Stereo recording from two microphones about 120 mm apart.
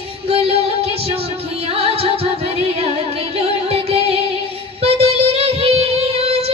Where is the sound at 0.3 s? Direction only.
50° right (ahead or behind).